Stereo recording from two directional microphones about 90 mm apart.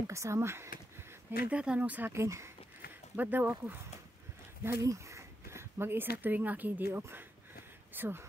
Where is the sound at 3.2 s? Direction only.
20° right (ahead or behind).